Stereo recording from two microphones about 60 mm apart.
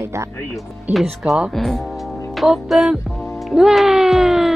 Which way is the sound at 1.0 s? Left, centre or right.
Centre.